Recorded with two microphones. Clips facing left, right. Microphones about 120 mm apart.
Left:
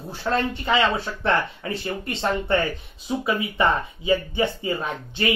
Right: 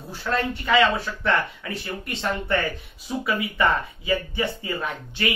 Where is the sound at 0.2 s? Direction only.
25° left (ahead or behind).